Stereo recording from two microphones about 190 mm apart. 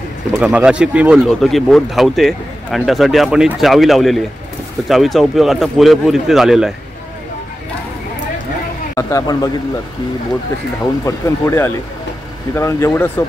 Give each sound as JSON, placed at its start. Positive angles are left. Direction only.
{"t": 0.3, "sound": "speech", "side_deg": -5}
{"t": 8.9, "sound": "speech", "side_deg": 20}
{"t": 11.1, "sound": "speech", "side_deg": 15}